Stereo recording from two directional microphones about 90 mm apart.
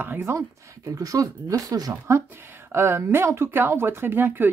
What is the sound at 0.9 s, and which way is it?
Speech, 40° right (ahead or behind).